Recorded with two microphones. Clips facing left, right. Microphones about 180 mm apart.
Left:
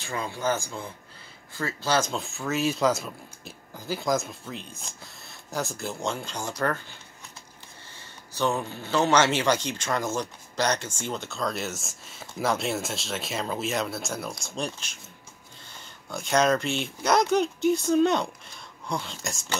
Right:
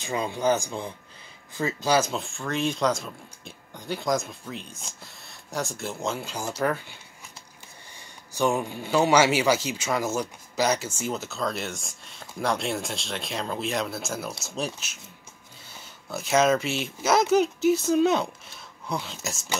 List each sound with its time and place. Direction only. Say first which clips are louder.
0.0 s speech: right 4 dB; 20° right (ahead or behind)
2.0 s speech: right 2 dB; centre (ahead or behind)
8.4 s speech: right 2 dB; 10° right (ahead or behind)